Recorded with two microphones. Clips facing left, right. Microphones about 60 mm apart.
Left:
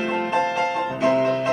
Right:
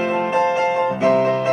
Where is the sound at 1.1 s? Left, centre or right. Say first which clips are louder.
Right 2 dB; right.